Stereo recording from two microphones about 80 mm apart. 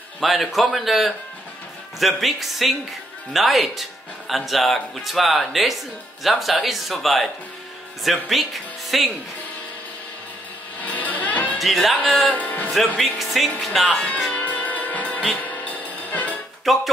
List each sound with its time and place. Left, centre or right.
0.2 s speech: centre
10.8 s music: centre
11.5 s speech: centre
12.3 s music: centre
13.0 s speech: centre
14.3 s music: centre
16.7 s speech: centre